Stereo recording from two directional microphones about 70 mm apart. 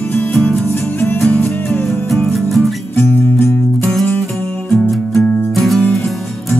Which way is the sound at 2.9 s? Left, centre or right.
Left.